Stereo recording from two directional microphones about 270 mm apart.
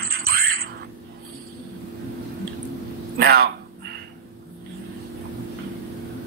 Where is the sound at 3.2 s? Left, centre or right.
Right.